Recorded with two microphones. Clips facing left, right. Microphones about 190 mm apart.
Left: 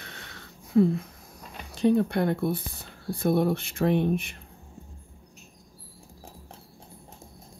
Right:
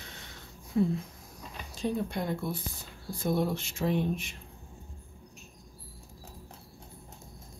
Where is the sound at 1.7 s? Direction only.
65° left (ahead or behind).